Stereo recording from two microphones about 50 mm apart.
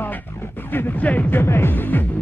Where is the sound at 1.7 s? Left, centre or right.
Left.